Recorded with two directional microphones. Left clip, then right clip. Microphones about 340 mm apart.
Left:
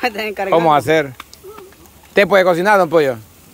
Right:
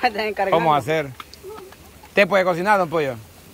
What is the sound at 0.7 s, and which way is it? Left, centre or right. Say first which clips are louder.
Speech: left 6 dB; centre.